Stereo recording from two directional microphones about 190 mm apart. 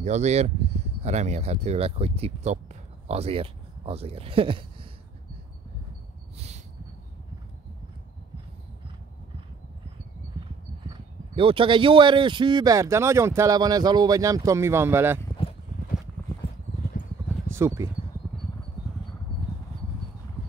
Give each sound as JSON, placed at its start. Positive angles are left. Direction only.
{"t": 0.0, "sound": "speech", "side_deg": -35}
{"t": 6.3, "sound": "a sound", "side_deg": -35}
{"t": 10.9, "sound": "speech", "side_deg": -30}
{"t": 15.4, "sound": "clip-clop", "side_deg": 30}
{"t": 17.5, "sound": "speech", "side_deg": -15}